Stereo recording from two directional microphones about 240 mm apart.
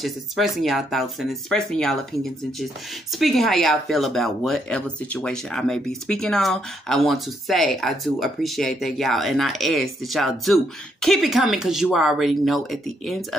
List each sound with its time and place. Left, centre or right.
0.0 s speech: centre